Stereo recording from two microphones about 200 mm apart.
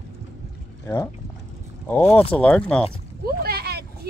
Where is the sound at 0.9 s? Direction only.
15° left (ahead or behind).